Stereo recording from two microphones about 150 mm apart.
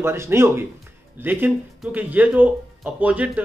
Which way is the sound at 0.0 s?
15° right (ahead or behind).